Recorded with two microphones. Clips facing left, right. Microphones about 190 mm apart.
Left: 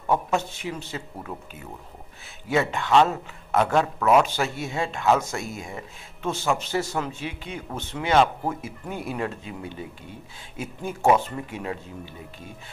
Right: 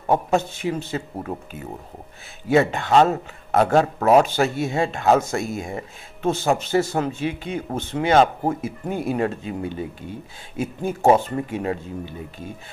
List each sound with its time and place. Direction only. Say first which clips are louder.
0.0 s speech: right 4 dB; 40° right (ahead or behind)
2.5 s speech: right 4 dB; 50° right (ahead or behind)
10.6 s speech: right 5 dB; 45° right (ahead or behind)